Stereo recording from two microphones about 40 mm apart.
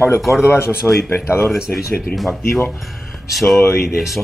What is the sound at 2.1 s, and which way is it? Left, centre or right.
Speech, centre.